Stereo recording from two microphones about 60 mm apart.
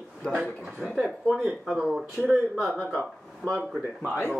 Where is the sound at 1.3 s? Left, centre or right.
Centre.